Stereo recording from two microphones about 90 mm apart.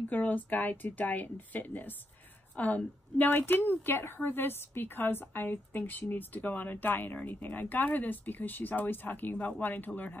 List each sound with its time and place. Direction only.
0.1 s a woman's voice: 20° left (ahead or behind)